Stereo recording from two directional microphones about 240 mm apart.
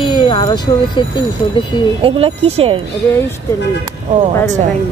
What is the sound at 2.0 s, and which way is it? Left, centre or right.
Speech, right.